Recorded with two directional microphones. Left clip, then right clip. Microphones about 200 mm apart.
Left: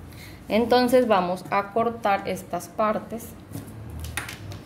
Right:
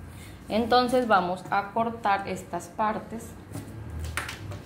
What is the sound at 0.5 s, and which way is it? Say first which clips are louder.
A woman's voice: left 3 dB; 40° left (ahead or behind).